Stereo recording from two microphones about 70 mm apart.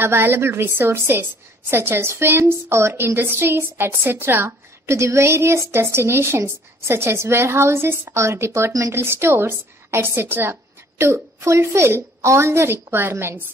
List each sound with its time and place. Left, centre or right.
0.0 s a woman's voice: right